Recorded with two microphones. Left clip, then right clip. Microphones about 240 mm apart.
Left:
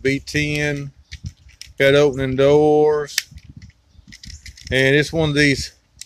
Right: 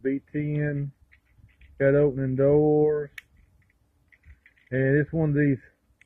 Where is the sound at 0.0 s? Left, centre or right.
Left.